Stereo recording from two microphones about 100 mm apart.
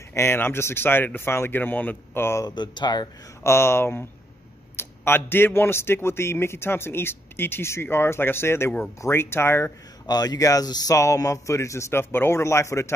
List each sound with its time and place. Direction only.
0.1 s a man's voice: 25° left (ahead or behind)
2.4 s speech: 50° left (ahead or behind)
3.4 s a man's voice: 25° left (ahead or behind)
10.0 s speech: 40° left (ahead or behind)